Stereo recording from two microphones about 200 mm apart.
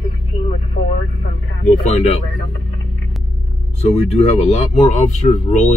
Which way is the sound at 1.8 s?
35° left (ahead or behind).